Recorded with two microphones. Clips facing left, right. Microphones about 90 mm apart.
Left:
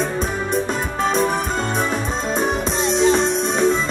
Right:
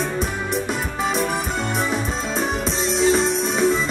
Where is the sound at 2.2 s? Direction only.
40° left (ahead or behind).